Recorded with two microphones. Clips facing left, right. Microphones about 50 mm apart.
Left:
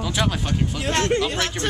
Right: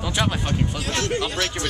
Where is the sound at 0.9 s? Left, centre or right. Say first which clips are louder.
Left 6 dB; left.